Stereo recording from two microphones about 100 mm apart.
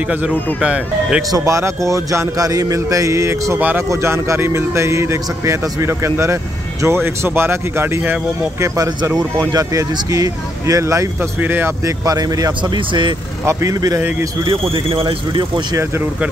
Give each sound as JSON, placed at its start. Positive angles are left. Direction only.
{"t": 0.1, "sound": "speech", "side_deg": -10}
{"t": 1.3, "sound": "a man's voice", "side_deg": -30}
{"t": 3.5, "sound": "speech", "side_deg": -20}
{"t": 3.9, "sound": "speech", "side_deg": -30}
{"t": 11.4, "sound": "speech", "side_deg": -20}
{"t": 12.1, "sound": "a man's voice", "side_deg": -40}
{"t": 13.5, "sound": "a man's voice", "side_deg": -35}
{"t": 14.4, "sound": "speech", "side_deg": -60}